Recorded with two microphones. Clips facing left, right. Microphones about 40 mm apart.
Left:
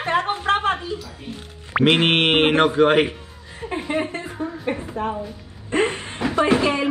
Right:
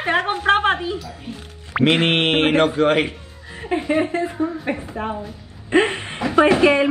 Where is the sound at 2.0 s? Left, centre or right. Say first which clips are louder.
Even; left.